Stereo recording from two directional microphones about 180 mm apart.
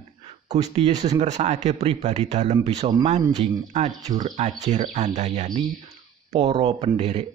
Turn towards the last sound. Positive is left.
turn(degrees=-35)  # may be behind; listen again after turning